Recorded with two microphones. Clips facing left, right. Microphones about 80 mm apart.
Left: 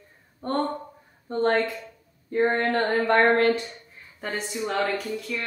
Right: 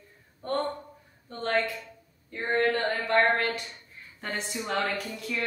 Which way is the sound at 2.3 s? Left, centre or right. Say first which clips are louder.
Left 4 dB; left.